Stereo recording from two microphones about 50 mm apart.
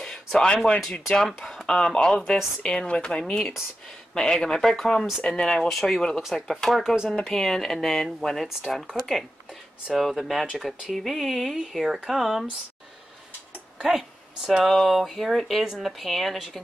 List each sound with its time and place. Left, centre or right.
0.0 s a sound: centre
1.1 s speech: centre
5.6 s speech: centre
9.9 s speech: centre
13.7 s a sound: centre
14.6 s speech: centre
15.6 s speech: centre
16.0 s speech: centre